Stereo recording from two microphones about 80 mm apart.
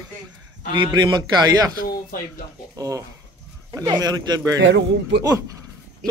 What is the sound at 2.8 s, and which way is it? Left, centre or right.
Speech, right.